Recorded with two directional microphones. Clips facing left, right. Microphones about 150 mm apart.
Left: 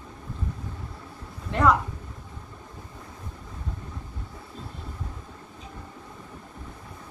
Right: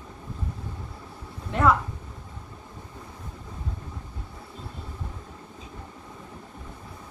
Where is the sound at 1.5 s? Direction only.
Centre (ahead or behind).